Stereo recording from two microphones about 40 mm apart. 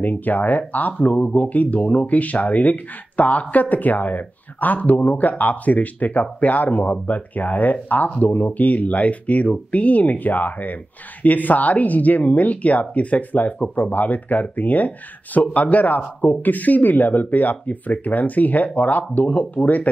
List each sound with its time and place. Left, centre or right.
0.0 s speech: left